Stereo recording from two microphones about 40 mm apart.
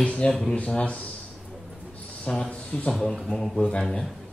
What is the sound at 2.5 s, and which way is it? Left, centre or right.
Speech, left.